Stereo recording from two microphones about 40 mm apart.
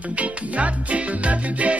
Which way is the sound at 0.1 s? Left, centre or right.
Right.